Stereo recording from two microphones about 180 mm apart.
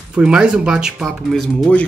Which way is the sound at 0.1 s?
5° right (ahead or behind).